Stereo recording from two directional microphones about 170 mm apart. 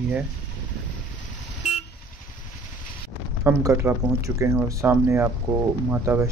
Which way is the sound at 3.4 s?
15° right (ahead or behind).